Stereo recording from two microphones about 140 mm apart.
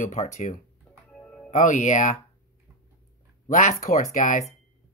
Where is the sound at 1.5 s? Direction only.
65° left (ahead or behind).